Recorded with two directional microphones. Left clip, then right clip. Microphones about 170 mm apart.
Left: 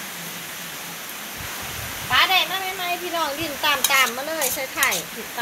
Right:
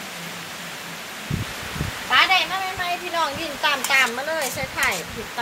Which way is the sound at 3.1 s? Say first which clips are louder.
Right 1 dB; 20° left (ahead or behind).